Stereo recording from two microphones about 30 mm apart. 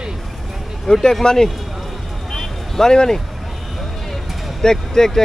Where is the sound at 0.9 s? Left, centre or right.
Centre.